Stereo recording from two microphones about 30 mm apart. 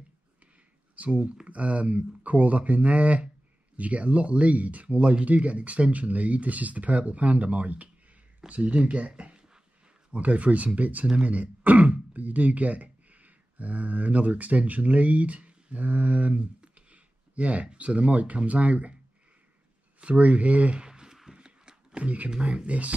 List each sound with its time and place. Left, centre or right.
0.9 s speech: right
10.1 s speech: right
16.9 s a sound: right
17.7 s speech: right
20.0 s speech: right
20.7 s a sound: right
21.9 s speech: right